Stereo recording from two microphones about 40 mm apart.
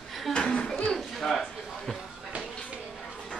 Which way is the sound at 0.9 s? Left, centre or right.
Centre.